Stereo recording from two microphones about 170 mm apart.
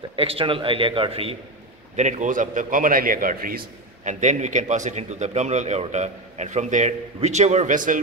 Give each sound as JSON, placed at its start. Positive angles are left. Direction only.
{"t": 0.1, "sound": "a man's voice", "side_deg": -35}
{"t": 2.0, "sound": "a man's voice", "side_deg": -45}